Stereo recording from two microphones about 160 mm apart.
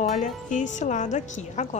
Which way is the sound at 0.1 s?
50° left (ahead or behind).